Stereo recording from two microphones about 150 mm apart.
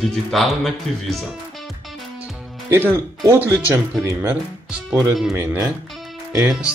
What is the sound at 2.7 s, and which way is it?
Speech, 15° right (ahead or behind).